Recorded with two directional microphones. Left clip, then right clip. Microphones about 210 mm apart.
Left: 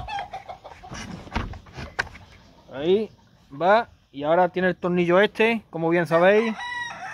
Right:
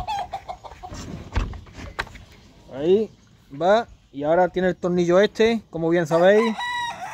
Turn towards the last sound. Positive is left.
turn(degrees=-55)  # may be behind; listen again after turning